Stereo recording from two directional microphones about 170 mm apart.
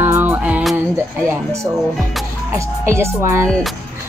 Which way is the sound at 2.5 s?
15° right (ahead or behind).